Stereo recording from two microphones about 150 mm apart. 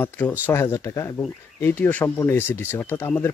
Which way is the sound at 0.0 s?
15° left (ahead or behind).